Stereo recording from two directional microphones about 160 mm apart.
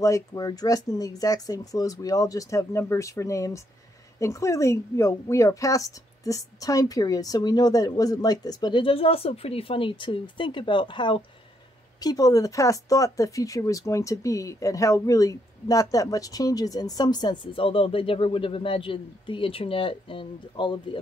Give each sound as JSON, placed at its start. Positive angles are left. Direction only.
{"t": 0.0, "sound": "speech", "side_deg": 20}